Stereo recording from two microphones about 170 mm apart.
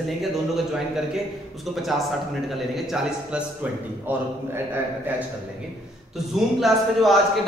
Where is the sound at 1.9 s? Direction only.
Centre (ahead or behind).